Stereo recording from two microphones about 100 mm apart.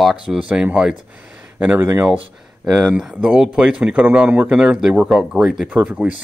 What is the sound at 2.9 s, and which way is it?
A man's voice, 10° right (ahead or behind).